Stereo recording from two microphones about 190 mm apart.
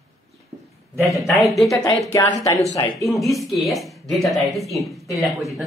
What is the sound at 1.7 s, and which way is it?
Speech, 20° left (ahead or behind).